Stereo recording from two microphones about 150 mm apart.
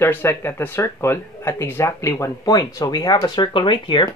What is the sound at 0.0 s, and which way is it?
Speech, 15° left (ahead or behind).